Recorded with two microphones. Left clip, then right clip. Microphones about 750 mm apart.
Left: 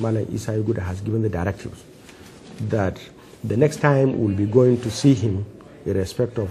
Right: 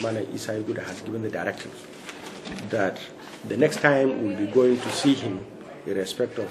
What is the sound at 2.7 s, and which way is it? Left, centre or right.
A man's voice, left.